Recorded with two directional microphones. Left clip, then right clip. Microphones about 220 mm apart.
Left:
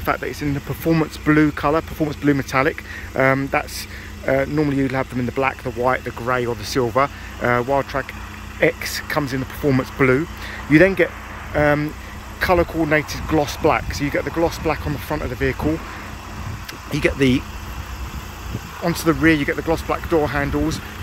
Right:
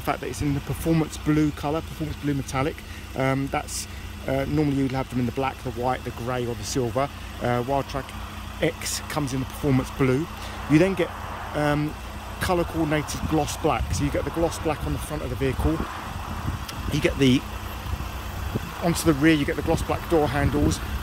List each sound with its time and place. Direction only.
0.0 s speech: 5° right (ahead or behind)
3.2 s speech: centre (ahead or behind)
16.9 s speech: 5° right (ahead or behind)
18.9 s speech: 5° right (ahead or behind)